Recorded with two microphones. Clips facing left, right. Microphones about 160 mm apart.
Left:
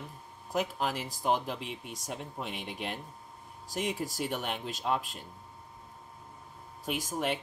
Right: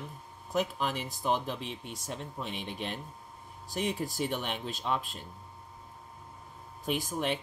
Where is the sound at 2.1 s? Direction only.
5° left (ahead or behind).